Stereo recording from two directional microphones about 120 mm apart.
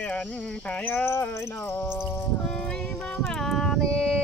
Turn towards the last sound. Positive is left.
turn(degrees=5)  # may be behind; listen again after turning